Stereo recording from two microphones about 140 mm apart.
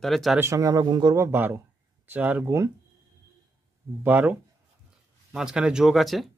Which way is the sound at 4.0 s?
15° right (ahead or behind).